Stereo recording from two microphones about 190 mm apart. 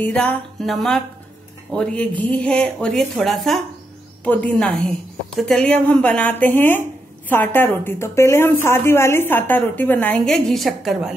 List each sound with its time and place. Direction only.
0.0 s a woman's voice: 5° left (ahead or behind)